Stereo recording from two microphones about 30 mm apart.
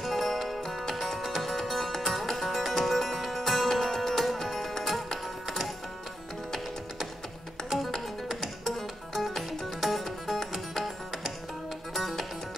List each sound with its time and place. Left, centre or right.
0.0 s music: centre
7.7 s music: right
8.6 s music: centre
11.9 s music: centre